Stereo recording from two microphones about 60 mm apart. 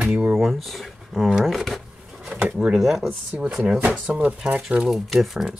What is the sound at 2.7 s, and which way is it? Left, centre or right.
Speech, centre.